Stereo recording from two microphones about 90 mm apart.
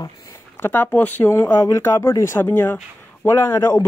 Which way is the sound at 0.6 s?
25° left (ahead or behind).